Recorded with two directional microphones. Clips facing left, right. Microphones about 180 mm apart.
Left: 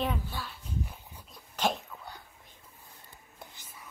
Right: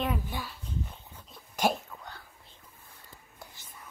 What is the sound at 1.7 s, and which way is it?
Speech, 10° right (ahead or behind).